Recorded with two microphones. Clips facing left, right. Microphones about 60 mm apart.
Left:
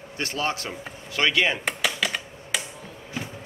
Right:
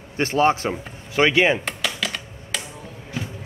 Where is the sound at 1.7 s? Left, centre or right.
Centre.